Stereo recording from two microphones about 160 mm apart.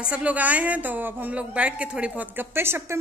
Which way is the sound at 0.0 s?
10° right (ahead or behind).